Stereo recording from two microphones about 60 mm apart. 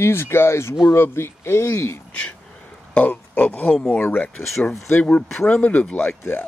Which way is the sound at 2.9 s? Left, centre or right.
Left.